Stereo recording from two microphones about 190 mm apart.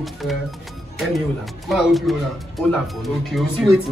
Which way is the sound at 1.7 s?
Centre (ahead or behind).